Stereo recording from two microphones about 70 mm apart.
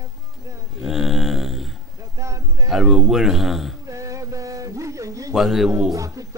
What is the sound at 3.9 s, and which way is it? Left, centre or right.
Music, right.